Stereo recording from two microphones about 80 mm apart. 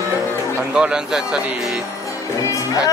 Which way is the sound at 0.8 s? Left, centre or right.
Centre.